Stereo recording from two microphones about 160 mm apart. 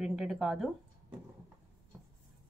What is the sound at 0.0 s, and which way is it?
Speech, 5° right (ahead or behind).